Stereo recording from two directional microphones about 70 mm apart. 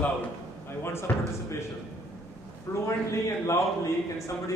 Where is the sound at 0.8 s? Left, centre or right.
Left.